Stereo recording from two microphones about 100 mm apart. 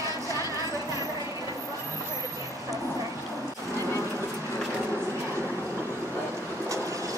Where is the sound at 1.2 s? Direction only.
35° left (ahead or behind).